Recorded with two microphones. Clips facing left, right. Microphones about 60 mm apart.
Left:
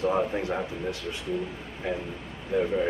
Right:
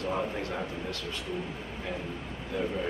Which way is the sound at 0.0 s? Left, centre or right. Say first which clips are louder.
Left 6 dB; centre.